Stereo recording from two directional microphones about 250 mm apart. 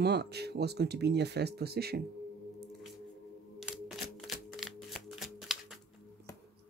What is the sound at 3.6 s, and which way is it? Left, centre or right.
Music, centre.